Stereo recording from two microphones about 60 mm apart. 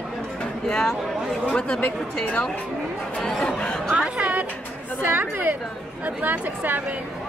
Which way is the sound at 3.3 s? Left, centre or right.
Centre.